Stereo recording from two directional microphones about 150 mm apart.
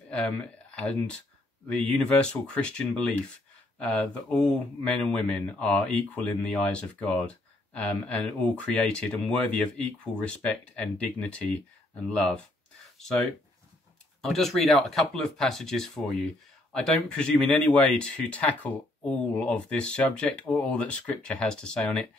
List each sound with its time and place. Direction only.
0.7 s speech: 5° left (ahead or behind)